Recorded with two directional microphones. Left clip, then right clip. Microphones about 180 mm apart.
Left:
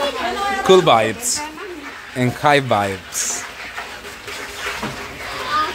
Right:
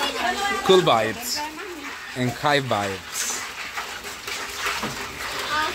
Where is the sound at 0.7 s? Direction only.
5° left (ahead or behind).